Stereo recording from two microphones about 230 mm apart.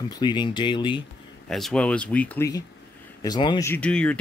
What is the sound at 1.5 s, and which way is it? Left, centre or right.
Speech, centre.